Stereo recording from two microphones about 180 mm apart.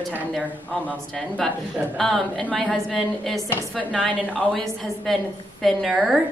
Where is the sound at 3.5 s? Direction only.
15° left (ahead or behind).